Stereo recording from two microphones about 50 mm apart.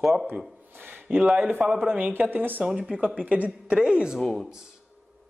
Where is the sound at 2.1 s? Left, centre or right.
Right.